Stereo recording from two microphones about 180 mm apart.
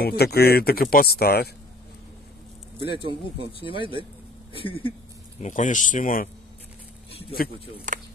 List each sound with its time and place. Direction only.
0.0 s speech: 60° left (ahead or behind)
2.9 s speech: 30° right (ahead or behind)
4.6 s speech: 30° left (ahead or behind)
5.4 s speech: 45° left (ahead or behind)
7.1 s a sound: 30° left (ahead or behind)
7.9 s speech: 45° right (ahead or behind)